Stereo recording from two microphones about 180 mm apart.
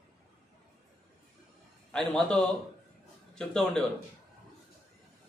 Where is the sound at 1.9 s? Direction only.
5° left (ahead or behind).